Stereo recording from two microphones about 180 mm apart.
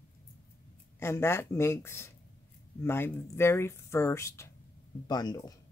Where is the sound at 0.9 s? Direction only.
15° left (ahead or behind).